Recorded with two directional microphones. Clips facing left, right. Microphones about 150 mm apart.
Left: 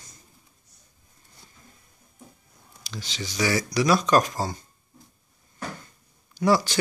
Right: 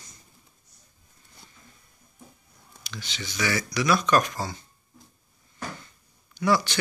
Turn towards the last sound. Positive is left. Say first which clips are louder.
# left 2 dB
turn(degrees=40)  # may be behind; listen again after turning